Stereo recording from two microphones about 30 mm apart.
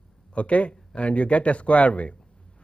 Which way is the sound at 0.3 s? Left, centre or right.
Left.